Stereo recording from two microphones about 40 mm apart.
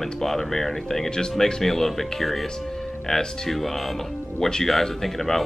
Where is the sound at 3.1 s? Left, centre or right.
Centre.